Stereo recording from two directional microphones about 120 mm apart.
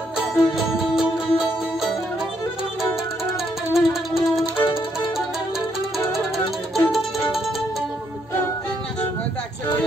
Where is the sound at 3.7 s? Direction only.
Centre (ahead or behind).